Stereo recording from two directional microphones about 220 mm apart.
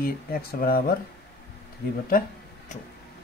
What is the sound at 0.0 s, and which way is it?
Speech, 40° left (ahead or behind).